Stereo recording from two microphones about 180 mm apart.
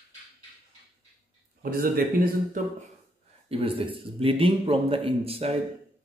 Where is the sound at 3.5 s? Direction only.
30° right (ahead or behind).